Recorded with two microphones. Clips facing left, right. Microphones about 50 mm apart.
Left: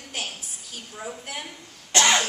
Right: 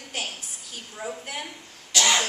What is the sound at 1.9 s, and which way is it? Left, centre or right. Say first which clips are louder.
Cough: left 3 dB; left.